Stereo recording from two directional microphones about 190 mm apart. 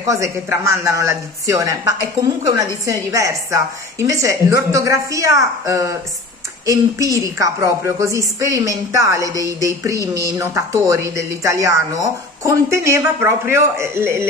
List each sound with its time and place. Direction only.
0.1 s a woman's voice: 15° right (ahead or behind)